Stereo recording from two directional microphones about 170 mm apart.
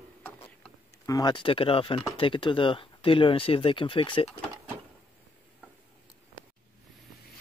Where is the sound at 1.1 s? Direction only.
25° left (ahead or behind).